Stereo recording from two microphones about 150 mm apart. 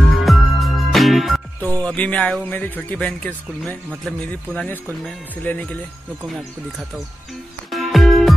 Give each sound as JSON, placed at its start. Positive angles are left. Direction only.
{"t": 0.2, "sound": "music", "side_deg": 0}
{"t": 1.7, "sound": "speech", "side_deg": 10}
{"t": 7.7, "sound": "music", "side_deg": 0}